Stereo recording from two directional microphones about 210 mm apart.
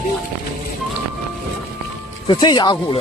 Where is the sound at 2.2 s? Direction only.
20° left (ahead or behind).